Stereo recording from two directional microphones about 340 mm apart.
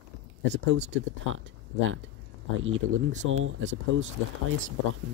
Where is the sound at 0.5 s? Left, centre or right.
Right.